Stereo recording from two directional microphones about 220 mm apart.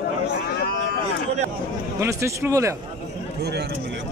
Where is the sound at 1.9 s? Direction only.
15° right (ahead or behind).